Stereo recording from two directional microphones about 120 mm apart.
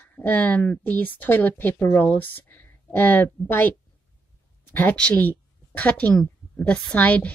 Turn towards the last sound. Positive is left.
turn(degrees=10)  # may be behind; listen again after turning